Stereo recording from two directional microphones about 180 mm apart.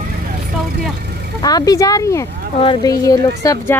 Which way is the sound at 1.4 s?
20° left (ahead or behind).